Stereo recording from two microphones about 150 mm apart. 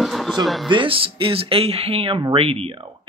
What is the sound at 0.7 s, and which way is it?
Speech, 35° right (ahead or behind).